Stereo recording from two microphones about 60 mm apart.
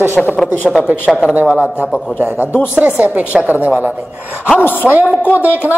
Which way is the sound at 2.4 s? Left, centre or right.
Left.